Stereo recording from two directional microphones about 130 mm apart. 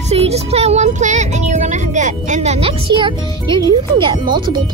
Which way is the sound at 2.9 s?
40° right (ahead or behind).